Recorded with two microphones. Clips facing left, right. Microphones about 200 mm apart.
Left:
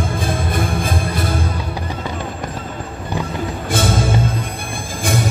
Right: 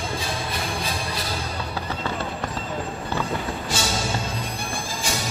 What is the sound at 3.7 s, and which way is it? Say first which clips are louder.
Music: left 9 dB; 55° left (ahead or behind).